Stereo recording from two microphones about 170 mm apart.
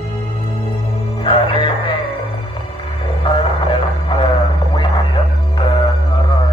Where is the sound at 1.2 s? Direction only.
30° left (ahead or behind).